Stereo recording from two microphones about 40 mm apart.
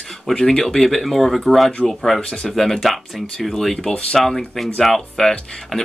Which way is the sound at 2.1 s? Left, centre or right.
Left.